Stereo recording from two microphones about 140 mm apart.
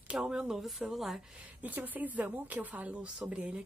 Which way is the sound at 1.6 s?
10° right (ahead or behind).